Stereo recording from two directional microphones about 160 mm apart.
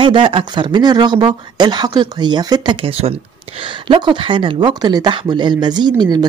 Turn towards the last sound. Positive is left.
turn(degrees=-25)  # may be behind; listen again after turning